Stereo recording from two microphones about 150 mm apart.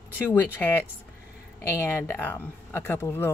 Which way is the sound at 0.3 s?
15° left (ahead or behind).